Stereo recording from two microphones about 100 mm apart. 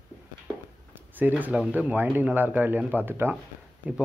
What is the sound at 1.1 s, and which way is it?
Speech, 15° right (ahead or behind).